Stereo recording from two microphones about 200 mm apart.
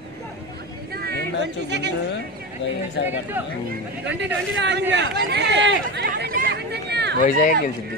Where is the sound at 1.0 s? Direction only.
60° right (ahead or behind).